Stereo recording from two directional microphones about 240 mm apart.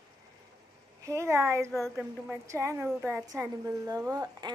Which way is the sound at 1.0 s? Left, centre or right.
Centre.